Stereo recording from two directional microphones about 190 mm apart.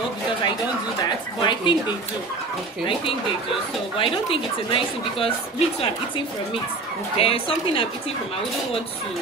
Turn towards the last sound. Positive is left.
turn(degrees=30)  # may be behind; listen again after turning